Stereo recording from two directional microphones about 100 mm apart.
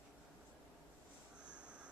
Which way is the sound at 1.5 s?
10° right (ahead or behind).